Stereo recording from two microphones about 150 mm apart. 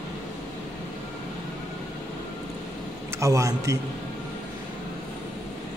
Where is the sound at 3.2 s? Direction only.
20° right (ahead or behind).